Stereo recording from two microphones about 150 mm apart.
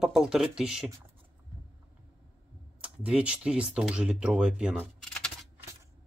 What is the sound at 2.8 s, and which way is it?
Speech, 5° right (ahead or behind).